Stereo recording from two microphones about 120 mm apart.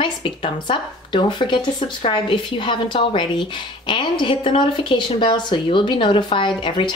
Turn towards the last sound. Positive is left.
turn(degrees=40)  # may be behind; listen again after turning